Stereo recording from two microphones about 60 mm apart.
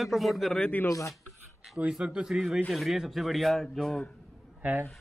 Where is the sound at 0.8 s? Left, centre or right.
Left.